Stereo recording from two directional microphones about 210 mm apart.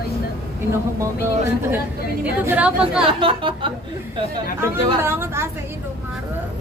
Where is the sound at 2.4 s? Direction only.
5° right (ahead or behind).